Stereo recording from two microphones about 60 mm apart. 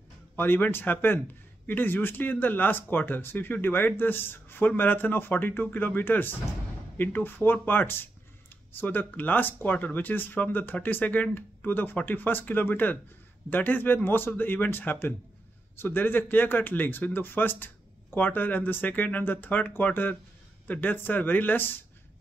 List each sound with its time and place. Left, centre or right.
0.4 s speech: left